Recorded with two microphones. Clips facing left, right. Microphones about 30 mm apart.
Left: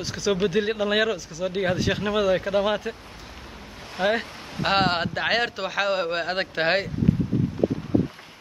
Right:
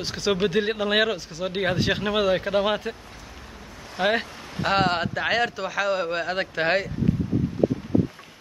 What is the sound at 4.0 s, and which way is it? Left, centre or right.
Speech, centre.